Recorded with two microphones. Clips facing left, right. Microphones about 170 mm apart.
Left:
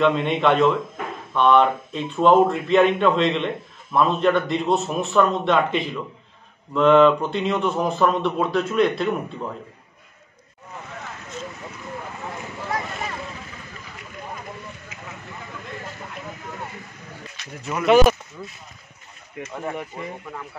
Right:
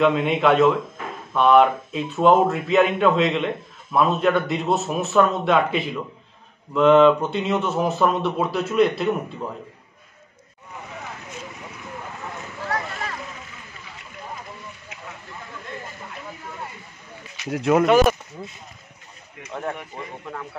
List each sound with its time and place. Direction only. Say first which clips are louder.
0.0 s speech: right 1 dB; 5° right (ahead or behind)
14.9 s a sound: even; 65° right (ahead or behind)
17.5 s speech: right 12 dB; 90° right
17.8 s speech: left 4 dB; centre (ahead or behind)